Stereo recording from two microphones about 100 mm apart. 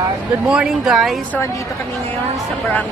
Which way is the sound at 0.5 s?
5° right (ahead or behind).